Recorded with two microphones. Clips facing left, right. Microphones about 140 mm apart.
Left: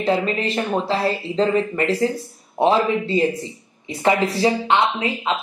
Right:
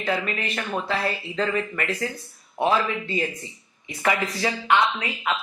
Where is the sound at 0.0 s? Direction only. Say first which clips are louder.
Left 6 dB; 30° left (ahead or behind).